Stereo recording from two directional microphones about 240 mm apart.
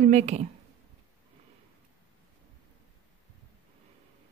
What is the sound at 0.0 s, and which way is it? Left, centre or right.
Speech, right.